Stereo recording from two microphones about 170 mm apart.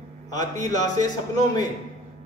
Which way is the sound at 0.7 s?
25° left (ahead or behind).